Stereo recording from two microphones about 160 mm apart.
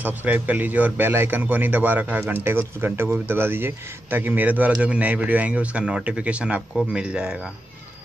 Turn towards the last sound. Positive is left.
turn(degrees=-5)  # may be behind; listen again after turning